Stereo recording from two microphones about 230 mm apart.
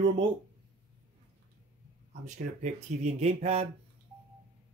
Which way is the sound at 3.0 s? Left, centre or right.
Right.